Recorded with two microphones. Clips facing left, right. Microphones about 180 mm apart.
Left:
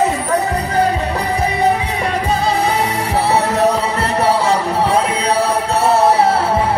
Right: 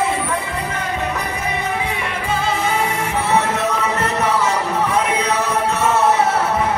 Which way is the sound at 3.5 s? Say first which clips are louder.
Left 5 dB; 35° left (ahead or behind).